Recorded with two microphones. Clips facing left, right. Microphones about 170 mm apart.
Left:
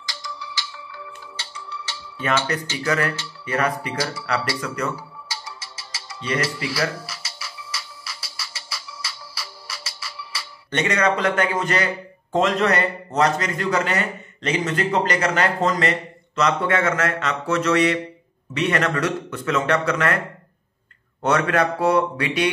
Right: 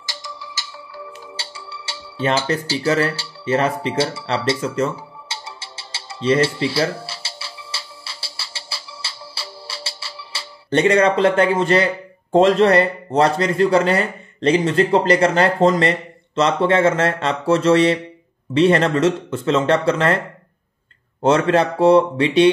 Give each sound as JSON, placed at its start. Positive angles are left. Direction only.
{"t": 0.4, "sound": "music", "side_deg": -45}
{"t": 1.3, "sound": "speech", "side_deg": -30}
{"t": 21.2, "sound": "speech", "side_deg": -30}